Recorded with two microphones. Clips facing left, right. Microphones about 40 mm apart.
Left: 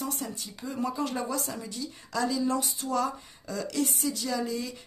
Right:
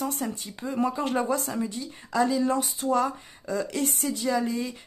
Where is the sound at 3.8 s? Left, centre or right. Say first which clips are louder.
Right 1 dB; right.